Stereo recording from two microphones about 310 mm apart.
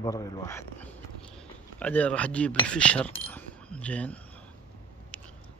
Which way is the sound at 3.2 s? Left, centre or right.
Centre.